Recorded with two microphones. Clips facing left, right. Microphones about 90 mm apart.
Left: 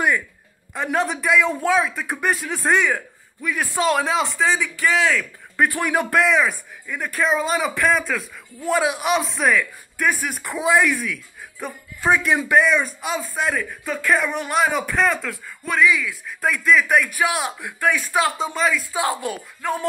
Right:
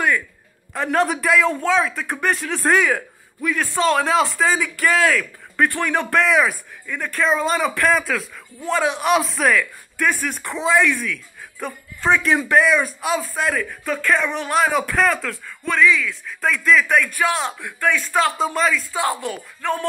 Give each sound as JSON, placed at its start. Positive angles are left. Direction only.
{"t": 0.7, "sound": "speech", "side_deg": 0}
{"t": 3.7, "sound": "speech", "side_deg": 10}
{"t": 5.7, "sound": "a man's voice", "side_deg": 15}
{"t": 6.2, "sound": "speech", "side_deg": 0}
{"t": 6.9, "sound": "a man's voice", "side_deg": 10}
{"t": 18.4, "sound": "speech", "side_deg": 0}
{"t": 18.9, "sound": "speech", "side_deg": 20}
{"t": 19.6, "sound": "speech", "side_deg": 5}